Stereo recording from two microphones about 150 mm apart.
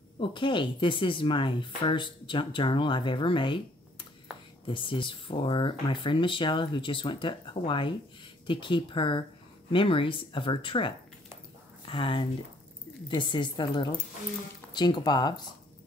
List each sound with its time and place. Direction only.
0.2 s speech: 35° left (ahead or behind)
4.6 s speech: 35° left (ahead or behind)